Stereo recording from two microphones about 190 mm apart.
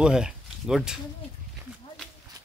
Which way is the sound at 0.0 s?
5° right (ahead or behind).